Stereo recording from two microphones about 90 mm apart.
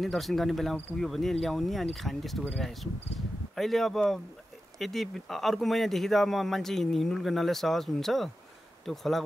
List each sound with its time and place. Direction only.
0.0 s speech: centre (ahead or behind)